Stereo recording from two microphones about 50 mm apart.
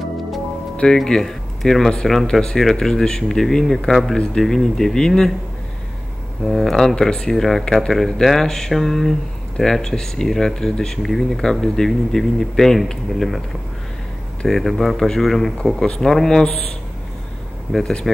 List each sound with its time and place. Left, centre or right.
0.9 s speech: centre
6.4 s speech: centre
7.9 s speech: centre
14.5 s speech: centre
18.1 s speech: centre